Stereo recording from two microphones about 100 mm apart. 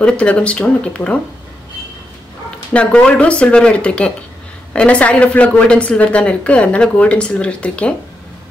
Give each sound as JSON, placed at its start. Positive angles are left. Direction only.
{"t": 0.0, "sound": "a woman's voice", "side_deg": 10}
{"t": 2.7, "sound": "a woman's voice", "side_deg": 10}